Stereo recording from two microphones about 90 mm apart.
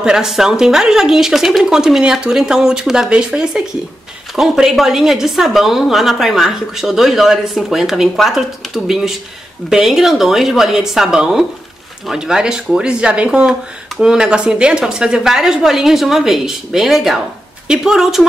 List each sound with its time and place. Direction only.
0.0 s speech: 5° right (ahead or behind)